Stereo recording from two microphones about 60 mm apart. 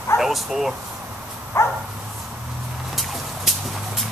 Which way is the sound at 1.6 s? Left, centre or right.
Left.